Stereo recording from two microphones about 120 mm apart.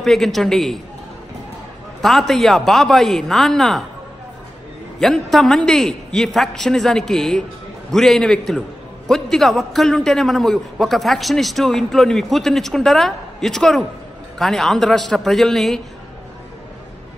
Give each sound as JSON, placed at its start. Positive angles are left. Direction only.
{"t": 0.0, "sound": "a man's voice", "side_deg": 0}
{"t": 2.0, "sound": "a man's voice", "side_deg": 0}
{"t": 5.0, "sound": "a man's voice", "side_deg": 5}